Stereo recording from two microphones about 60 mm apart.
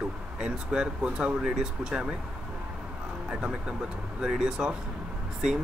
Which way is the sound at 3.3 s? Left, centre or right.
Centre.